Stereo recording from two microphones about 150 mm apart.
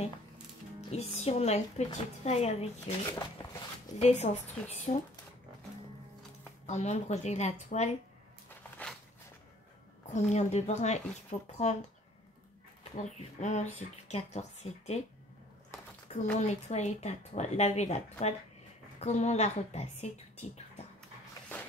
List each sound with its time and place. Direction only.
0.7 s speech: 45° left (ahead or behind)
3.1 s speech: 25° left (ahead or behind)
4.0 s speech: 50° left (ahead or behind)
6.6 s speech: 50° left (ahead or behind)
8.5 s a sound: 10° left (ahead or behind)
10.1 s speech: 50° left (ahead or behind)
12.9 s speech: 50° left (ahead or behind)
16.3 s speech: 50° left (ahead or behind)
18.9 s a woman's voice: 50° left (ahead or behind)
21.5 s a sound: 10° left (ahead or behind)